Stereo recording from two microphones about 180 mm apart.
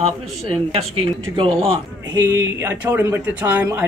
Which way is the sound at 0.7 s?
30° right (ahead or behind).